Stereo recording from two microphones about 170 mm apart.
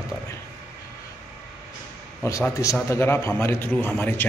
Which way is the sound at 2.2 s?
15° left (ahead or behind).